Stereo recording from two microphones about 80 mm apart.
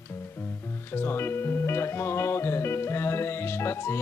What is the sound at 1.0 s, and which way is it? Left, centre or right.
Music, left.